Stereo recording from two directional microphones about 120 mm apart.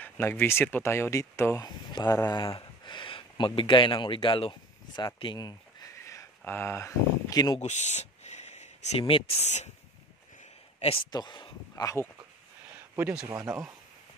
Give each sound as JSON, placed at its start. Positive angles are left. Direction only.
{"t": 0.0, "sound": "speech", "side_deg": 15}
{"t": 2.4, "sound": "speech", "side_deg": 45}
{"t": 7.6, "sound": "a sound", "side_deg": 80}
{"t": 9.0, "sound": "speech", "side_deg": 50}
{"t": 10.8, "sound": "speech", "side_deg": 50}
{"t": 11.1, "sound": "speech", "side_deg": 35}
{"t": 11.7, "sound": "speech", "side_deg": 25}
{"t": 13.3, "sound": "speech", "side_deg": -20}